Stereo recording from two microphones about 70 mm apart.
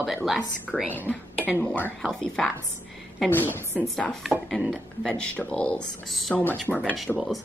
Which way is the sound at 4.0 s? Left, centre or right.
Centre.